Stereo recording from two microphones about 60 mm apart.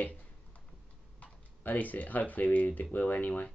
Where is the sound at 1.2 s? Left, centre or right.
Left.